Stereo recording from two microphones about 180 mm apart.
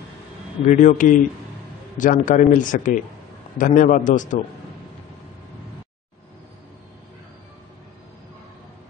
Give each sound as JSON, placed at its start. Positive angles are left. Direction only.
{"t": 0.7, "sound": "speech", "side_deg": 45}